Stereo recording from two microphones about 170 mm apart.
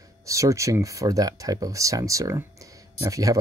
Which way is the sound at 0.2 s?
20° right (ahead or behind).